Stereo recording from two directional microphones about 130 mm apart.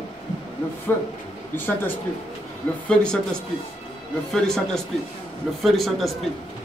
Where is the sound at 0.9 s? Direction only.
15° left (ahead or behind).